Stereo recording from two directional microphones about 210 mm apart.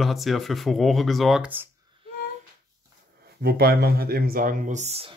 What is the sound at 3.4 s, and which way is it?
Speech, 50° right (ahead or behind).